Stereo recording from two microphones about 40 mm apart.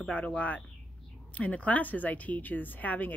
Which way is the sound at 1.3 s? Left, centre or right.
Left.